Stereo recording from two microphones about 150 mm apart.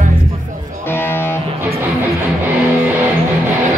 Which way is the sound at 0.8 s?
15° left (ahead or behind).